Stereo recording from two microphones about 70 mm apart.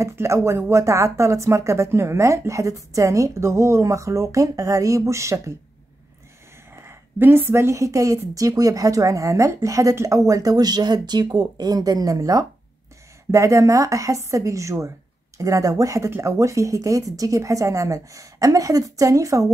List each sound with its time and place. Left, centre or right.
0.1 s speech: right
6.7 s speech: right
13.3 s speech: right